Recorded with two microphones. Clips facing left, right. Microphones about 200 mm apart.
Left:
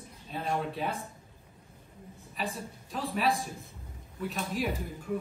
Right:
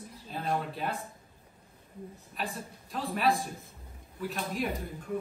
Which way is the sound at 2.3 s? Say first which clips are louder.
Left 2 dB; centre (ahead or behind).